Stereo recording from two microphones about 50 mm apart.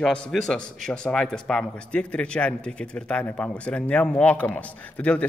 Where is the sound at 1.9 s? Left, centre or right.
Left.